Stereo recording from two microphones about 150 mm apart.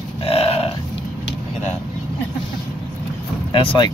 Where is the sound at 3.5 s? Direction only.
35° left (ahead or behind).